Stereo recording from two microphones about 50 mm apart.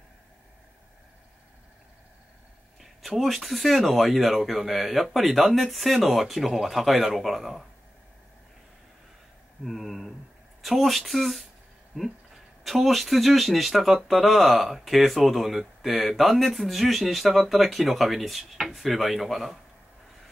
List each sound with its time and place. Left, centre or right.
2.8 s speech: centre
9.7 s speech: centre
11.9 s speech: centre
12.6 s speech: centre